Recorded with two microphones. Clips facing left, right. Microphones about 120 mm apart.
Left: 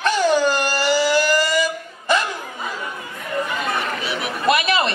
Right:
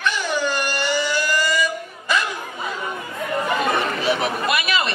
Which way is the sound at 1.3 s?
30° left (ahead or behind).